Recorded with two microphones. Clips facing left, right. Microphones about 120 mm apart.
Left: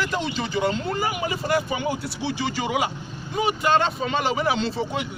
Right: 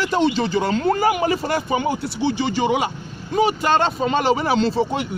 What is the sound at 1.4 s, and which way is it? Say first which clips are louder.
A man's voice: right 3 dB; 35° right (ahead or behind).